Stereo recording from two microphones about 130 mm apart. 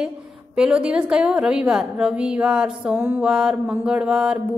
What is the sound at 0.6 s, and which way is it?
A woman's voice, 10° right (ahead or behind).